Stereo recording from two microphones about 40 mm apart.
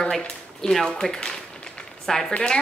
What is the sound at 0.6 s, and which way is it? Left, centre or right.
Speech, centre.